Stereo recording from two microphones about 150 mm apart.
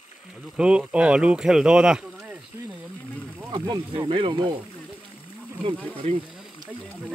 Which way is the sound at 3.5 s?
30° right (ahead or behind).